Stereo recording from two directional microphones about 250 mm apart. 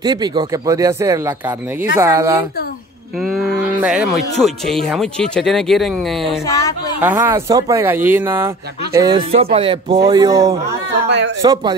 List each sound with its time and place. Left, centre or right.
0.0 s speech: centre
6.4 s speech: centre
7.0 s speech: centre
11.1 s a sound: right
11.4 s speech: centre